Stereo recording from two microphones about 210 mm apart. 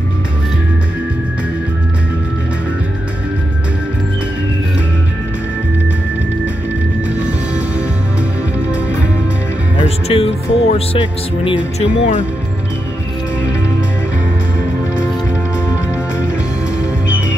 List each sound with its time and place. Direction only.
9.8 s speech: 30° left (ahead or behind)